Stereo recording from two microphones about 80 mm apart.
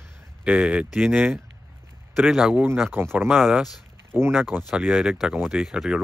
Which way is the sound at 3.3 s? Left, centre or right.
Centre.